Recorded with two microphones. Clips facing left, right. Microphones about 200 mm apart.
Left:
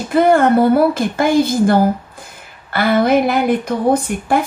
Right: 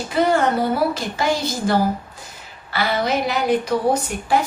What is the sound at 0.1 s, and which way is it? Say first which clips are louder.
Speech: left 7 dB; 55° left (ahead or behind).